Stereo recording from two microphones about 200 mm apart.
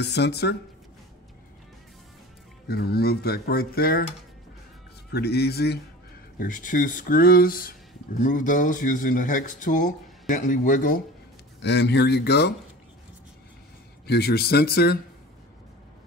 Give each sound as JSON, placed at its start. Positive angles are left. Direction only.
{"t": 0.0, "sound": "speech", "side_deg": 55}
{"t": 2.7, "sound": "speech", "side_deg": 50}
{"t": 5.1, "sound": "speech", "side_deg": 55}
{"t": 6.4, "sound": "speech", "side_deg": 40}
{"t": 11.6, "sound": "speech", "side_deg": 60}
{"t": 14.0, "sound": "speech", "side_deg": 55}